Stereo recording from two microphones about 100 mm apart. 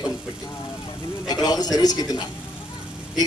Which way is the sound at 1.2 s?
40° left (ahead or behind).